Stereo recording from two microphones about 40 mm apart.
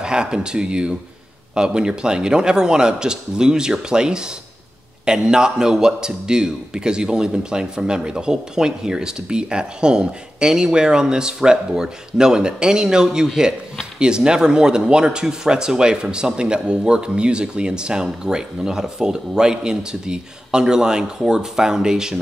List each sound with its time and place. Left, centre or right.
0.0 s a man's voice: right